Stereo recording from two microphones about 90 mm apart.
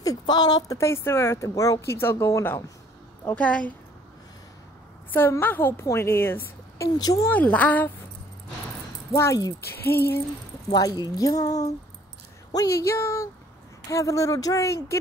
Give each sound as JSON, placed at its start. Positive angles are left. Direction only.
{"t": 0.0, "sound": "a woman's voice", "side_deg": 45}
{"t": 1.9, "sound": "a woman's voice", "side_deg": 30}
{"t": 3.3, "sound": "a woman's voice", "side_deg": 15}
{"t": 5.1, "sound": "a woman's voice", "side_deg": 20}
{"t": 7.2, "sound": "a woman's voice", "side_deg": 15}
{"t": 9.1, "sound": "a woman's voice", "side_deg": 35}
{"t": 10.7, "sound": "a woman's voice", "side_deg": 50}